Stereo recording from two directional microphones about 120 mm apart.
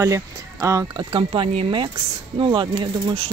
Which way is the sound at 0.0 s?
25° right (ahead or behind).